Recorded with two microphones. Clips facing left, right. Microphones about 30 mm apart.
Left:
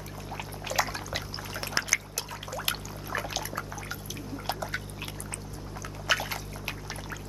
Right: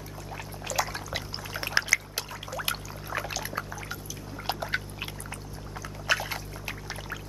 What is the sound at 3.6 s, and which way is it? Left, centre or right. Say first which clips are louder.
Water: right 2 dB; right.